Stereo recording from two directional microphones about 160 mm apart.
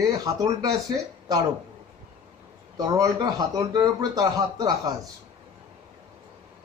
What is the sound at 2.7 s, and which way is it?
A man's voice, 25° right (ahead or behind).